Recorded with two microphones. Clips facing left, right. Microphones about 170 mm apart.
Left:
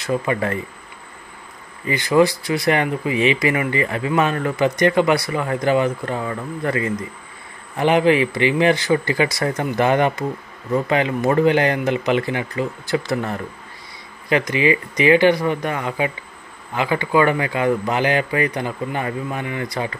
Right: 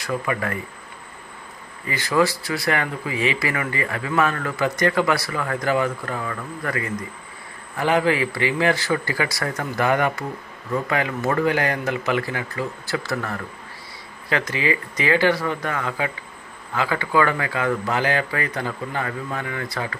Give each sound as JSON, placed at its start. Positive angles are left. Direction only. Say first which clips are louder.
{"t": 0.0, "sound": "speech", "louder": "left 4 dB", "side_deg": 25}
{"t": 1.9, "sound": "speech", "louder": "left 5 dB", "side_deg": 20}